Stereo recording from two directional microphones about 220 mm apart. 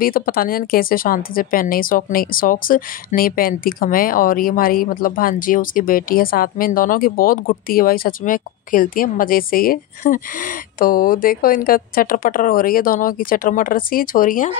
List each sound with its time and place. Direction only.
0.0 s a woman's voice: 40° left (ahead or behind)